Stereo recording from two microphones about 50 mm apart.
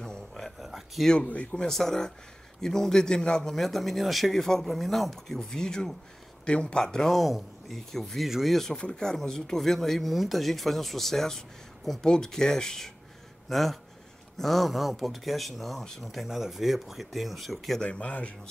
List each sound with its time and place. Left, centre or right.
0.0 s a sound: centre
0.6 s a sound: centre
1.0 s speech: centre
1.7 s speech: centre
3.5 s speech: centre
8.3 s speech: centre
8.5 s speech: centre
17.8 s speech: left